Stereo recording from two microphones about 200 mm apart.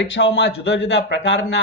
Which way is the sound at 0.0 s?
70° left (ahead or behind).